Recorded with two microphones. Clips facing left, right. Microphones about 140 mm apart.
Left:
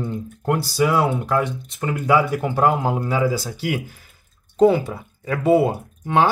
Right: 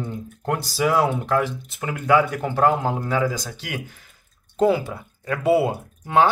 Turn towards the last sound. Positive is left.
turn(degrees=0)  # may be behind; listen again after turning